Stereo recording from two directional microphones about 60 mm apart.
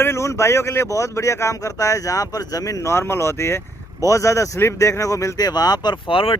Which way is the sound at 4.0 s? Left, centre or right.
Left.